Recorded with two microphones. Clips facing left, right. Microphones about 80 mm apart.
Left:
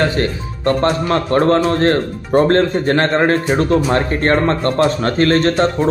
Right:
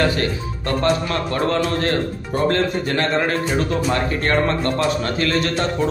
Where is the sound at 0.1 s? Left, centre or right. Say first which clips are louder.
Left 3 dB; left.